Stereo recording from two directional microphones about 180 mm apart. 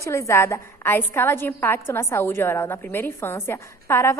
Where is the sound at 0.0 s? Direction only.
15° left (ahead or behind).